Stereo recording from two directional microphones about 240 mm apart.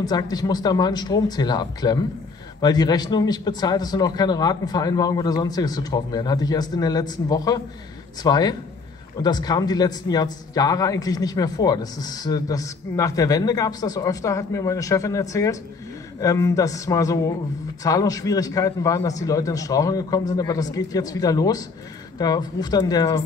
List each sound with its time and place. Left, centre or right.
0.0 s a man's voice: centre